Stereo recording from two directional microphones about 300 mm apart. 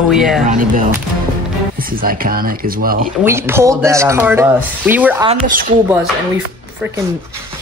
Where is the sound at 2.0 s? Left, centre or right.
Right.